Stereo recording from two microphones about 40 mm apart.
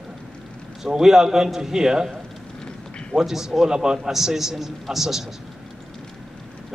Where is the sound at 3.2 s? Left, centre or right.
Centre.